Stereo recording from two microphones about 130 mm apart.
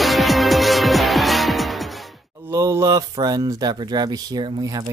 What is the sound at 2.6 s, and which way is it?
Mantra, 20° right (ahead or behind).